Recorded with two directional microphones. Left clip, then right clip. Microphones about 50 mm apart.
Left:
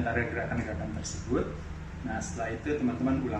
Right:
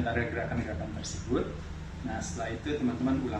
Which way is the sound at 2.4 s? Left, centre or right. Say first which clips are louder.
Left 2 dB; centre.